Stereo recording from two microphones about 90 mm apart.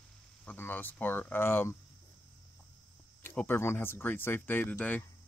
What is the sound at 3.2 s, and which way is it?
Speech, 25° left (ahead or behind).